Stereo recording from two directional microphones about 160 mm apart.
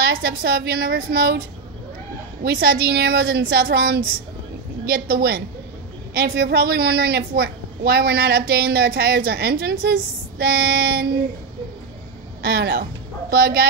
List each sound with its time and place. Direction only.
0.0 s a woman's voice: 70° right (ahead or behind)
2.4 s a woman's voice: 75° right (ahead or behind)
12.4 s a woman's voice: 75° right (ahead or behind)